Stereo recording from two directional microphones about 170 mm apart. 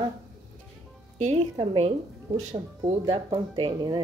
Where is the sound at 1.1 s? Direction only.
40° right (ahead or behind).